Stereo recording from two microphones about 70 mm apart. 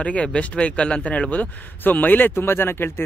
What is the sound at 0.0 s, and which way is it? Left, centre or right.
A man's voice, centre.